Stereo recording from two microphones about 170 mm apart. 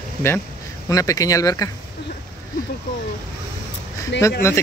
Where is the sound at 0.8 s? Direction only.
20° left (ahead or behind).